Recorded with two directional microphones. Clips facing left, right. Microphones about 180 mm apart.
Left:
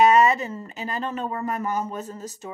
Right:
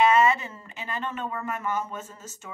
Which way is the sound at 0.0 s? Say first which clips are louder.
Left 3 dB; 40° left (ahead or behind).